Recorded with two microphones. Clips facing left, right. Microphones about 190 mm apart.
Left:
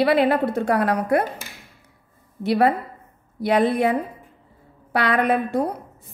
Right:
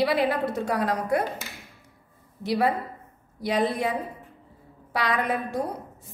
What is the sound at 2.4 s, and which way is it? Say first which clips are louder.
A woman's voice: left 5 dB; 60° left (ahead or behind).